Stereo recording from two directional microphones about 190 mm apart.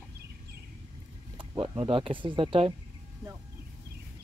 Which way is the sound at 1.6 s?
25° right (ahead or behind).